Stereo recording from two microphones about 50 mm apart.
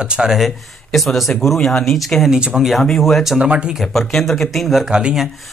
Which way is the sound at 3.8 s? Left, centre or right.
Centre.